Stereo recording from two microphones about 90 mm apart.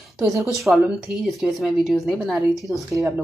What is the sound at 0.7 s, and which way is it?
A woman's voice, 10° right (ahead or behind).